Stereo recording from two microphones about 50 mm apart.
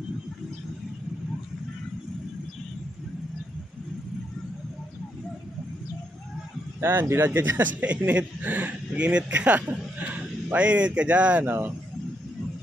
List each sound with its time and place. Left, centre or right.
6.8 s speech: right
8.1 s speech: right
8.5 s speech: right
8.9 s a man's voice: right
11.4 s speech: right